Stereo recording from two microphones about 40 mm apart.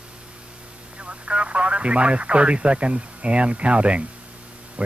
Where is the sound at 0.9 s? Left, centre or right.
Right.